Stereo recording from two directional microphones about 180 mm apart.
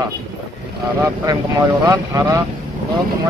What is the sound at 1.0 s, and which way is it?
Speech, 15° right (ahead or behind).